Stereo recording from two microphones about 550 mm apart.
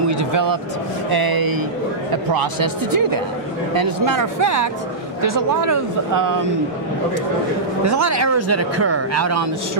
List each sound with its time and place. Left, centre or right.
0.2 s speech: right
7.8 s speech: right